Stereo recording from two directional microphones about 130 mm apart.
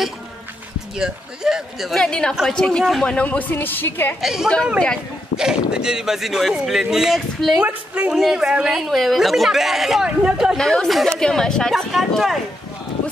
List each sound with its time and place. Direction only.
0.9 s a woman's voice: 5° right (ahead or behind); by 4.2 s 15° left (ahead or behind)
4.2 s a woman's voice: 5° right (ahead or behind)